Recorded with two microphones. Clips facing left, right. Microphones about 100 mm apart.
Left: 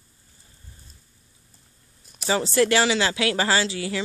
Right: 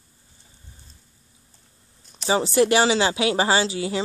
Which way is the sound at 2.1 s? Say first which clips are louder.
Right 2 dB; 30° right (ahead or behind).